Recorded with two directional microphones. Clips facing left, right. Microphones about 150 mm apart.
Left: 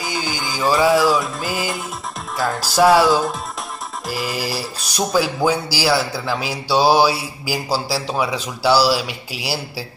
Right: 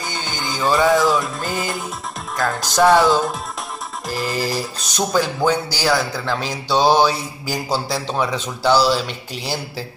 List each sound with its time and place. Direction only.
0.0 s music: 5° left (ahead or behind)
4.1 s speech: 10° left (ahead or behind)